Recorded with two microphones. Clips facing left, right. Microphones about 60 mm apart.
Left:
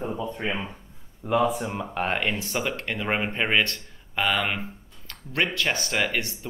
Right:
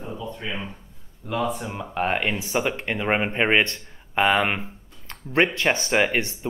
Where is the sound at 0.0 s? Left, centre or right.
Left.